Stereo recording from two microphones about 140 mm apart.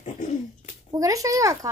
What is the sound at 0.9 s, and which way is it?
Speech, 25° right (ahead or behind).